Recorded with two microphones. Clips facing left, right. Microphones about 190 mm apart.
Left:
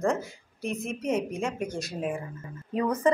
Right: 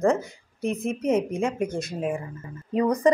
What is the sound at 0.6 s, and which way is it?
Speech, 55° right (ahead or behind).